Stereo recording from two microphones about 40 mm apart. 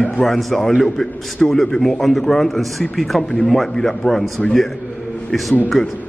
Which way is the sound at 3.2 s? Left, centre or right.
Centre.